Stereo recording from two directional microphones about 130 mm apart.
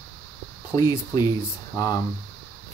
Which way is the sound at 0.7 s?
30° left (ahead or behind).